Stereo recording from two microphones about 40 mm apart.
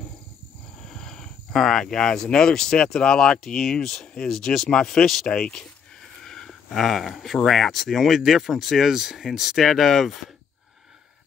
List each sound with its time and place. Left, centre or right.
0.7 s speech: centre
4.0 s speech: left
4.3 s speech: centre